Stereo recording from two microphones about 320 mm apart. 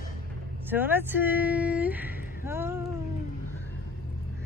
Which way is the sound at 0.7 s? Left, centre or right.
Centre.